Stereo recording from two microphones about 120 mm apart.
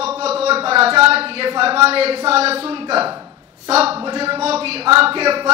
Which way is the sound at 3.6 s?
55° right (ahead or behind).